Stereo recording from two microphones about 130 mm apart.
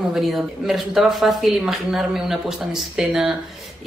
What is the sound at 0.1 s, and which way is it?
Speech, centre (ahead or behind).